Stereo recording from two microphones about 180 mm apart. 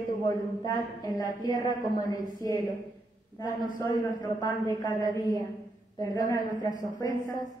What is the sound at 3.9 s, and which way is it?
A woman's voice, 20° left (ahead or behind).